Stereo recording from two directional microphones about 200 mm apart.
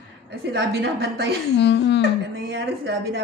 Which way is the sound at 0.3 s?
55° right (ahead or behind).